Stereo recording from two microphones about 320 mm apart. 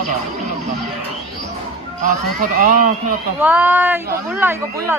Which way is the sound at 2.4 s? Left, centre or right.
Right.